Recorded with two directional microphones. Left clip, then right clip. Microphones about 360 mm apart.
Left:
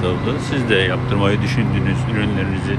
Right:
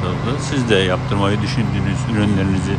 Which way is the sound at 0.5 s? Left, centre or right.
Centre.